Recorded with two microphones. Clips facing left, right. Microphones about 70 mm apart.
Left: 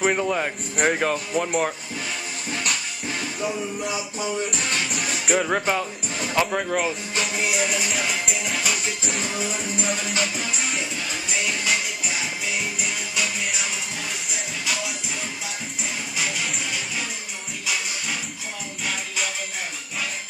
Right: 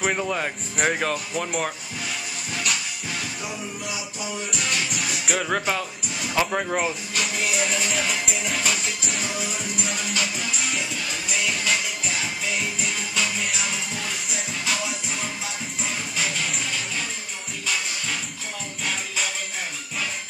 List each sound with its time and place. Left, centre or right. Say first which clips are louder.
0.0 s speech: left 3 dB; centre
3.4 s music: left 5 dB; left
5.2 s speech: left 3 dB; centre
6.3 s speech: left 1 dB; centre
7.2 s music: left 1 dB; left
7.6 s music: even; centre
9.0 s music: left 2 dB; left
12.8 s music: even; centre